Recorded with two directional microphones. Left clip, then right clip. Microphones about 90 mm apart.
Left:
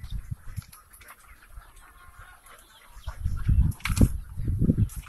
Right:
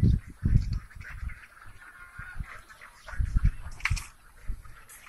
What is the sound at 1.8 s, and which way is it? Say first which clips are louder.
Fowl: right 7 dB; centre (ahead or behind).